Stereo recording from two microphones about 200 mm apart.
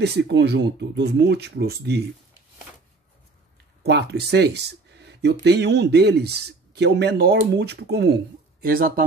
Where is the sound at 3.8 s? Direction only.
55° right (ahead or behind).